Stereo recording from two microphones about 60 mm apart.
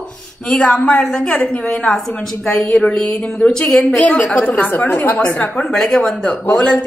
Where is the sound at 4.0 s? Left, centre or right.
Left.